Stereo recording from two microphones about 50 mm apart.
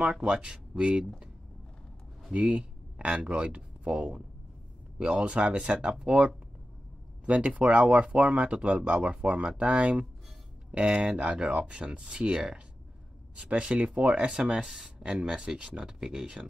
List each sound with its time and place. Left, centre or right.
0.0 s speech: centre
2.3 s speech: right